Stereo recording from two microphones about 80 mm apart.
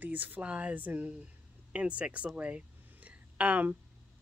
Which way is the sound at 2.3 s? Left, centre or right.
Centre.